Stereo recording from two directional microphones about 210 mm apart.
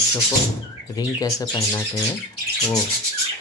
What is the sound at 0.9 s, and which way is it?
Speech, 20° left (ahead or behind).